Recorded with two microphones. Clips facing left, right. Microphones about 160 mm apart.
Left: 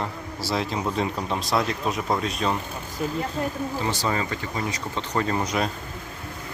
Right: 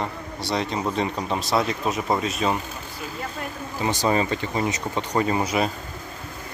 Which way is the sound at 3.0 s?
40° left (ahead or behind).